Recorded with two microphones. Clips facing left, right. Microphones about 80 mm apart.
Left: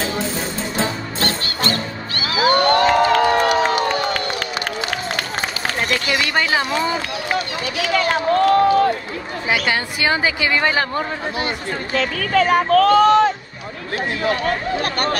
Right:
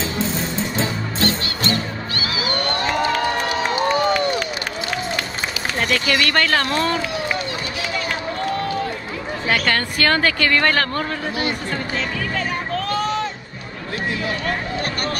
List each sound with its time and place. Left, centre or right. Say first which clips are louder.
1.4 s music: even; left
2.7 s crowd: left 6 dB; left
5.8 s speech: right 1 dB; centre
7.8 s run: left 8 dB; left
8.3 s crowd: left 12 dB; left
9.5 s a woman's voice: even; centre
11.9 s speech: left 10 dB; left
12.9 s speech: left 9 dB; left